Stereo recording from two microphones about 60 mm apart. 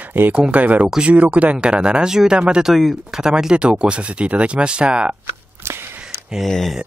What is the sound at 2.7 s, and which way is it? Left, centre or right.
Speech, centre.